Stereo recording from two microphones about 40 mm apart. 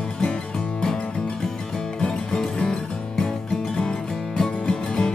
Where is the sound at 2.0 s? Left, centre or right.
Centre.